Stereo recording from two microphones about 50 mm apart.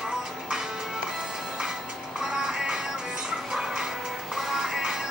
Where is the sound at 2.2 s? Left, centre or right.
Centre.